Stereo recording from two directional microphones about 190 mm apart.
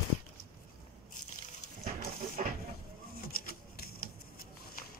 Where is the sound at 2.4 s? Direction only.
40° right (ahead or behind).